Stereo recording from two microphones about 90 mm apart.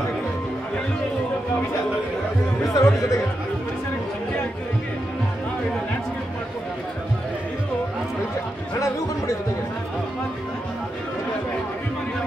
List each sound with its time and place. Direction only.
2.7 s speech: 35° left (ahead or behind)